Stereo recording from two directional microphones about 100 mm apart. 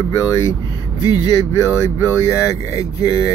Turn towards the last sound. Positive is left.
turn(degrees=35)  # may be behind; listen again after turning